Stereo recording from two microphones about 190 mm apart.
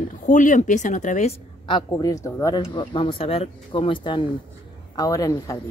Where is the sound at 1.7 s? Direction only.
20° left (ahead or behind).